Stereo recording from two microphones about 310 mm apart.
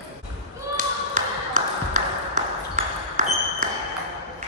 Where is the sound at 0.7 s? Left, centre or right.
Right.